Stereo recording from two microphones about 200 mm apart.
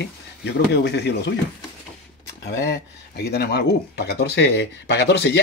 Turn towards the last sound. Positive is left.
turn(degrees=55)  # may be behind; listen again after turning